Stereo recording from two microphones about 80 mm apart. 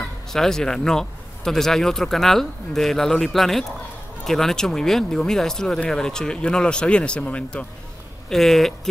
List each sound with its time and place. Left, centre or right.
0.3 s speech: centre
8.3 s speech: centre